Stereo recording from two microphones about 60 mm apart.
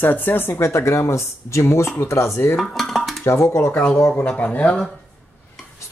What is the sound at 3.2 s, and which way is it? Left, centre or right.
Speech, left.